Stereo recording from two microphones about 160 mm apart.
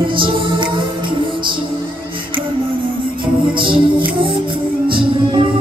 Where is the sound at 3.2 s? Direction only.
30° right (ahead or behind).